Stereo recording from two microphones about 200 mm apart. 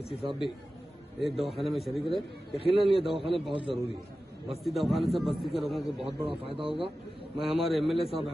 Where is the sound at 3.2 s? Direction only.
25° right (ahead or behind).